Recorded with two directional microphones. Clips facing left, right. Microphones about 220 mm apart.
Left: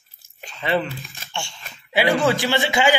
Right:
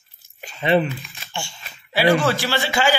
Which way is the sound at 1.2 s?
Centre (ahead or behind).